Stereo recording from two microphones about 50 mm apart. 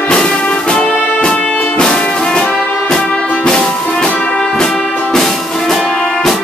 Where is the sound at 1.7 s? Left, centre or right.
Centre.